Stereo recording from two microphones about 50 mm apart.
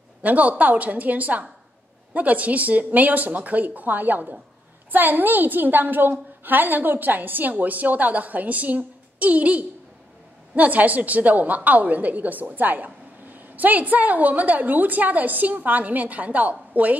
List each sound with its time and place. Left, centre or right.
0.2 s a woman's voice: right